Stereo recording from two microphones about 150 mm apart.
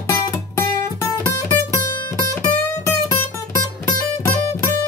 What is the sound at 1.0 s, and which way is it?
Music, 20° left (ahead or behind).